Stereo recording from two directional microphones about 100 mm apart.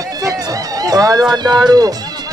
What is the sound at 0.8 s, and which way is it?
Speech, 35° right (ahead or behind).